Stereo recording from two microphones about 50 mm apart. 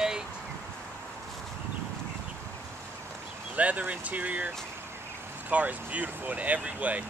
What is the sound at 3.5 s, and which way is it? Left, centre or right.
Speech, right.